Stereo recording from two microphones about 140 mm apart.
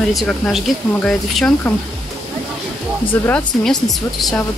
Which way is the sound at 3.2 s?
5° left (ahead or behind).